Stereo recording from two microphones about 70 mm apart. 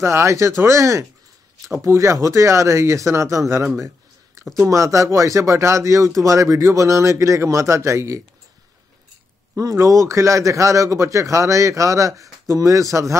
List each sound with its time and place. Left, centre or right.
0.0 s speech: right
9.6 s speech: right